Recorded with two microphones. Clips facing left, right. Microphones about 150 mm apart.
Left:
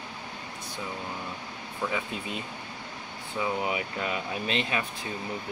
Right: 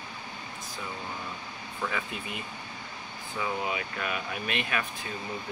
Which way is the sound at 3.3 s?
20° left (ahead or behind).